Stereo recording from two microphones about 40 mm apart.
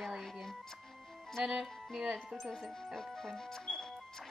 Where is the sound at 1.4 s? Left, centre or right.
Centre.